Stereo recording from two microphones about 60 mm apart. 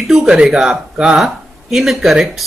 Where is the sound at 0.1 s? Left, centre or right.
Centre.